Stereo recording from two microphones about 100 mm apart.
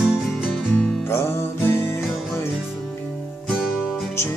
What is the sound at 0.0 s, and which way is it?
Music, 10° right (ahead or behind).